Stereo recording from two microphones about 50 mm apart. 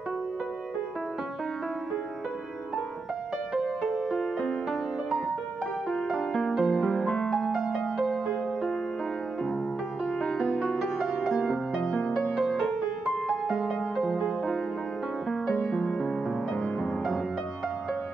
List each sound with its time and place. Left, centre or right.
3.5 s music: centre
6.1 s music: centre
7.0 s music: centre
7.5 s music: centre
10.6 s music: centre
14.2 s music: centre
16.5 s music: centre